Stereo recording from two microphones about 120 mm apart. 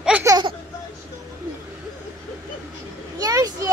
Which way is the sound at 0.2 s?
30° right (ahead or behind).